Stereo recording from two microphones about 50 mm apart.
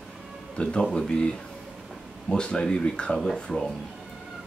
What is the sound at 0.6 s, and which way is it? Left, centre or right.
Speech, left.